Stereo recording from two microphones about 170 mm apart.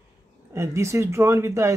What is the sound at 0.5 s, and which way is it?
Speech, 15° right (ahead or behind).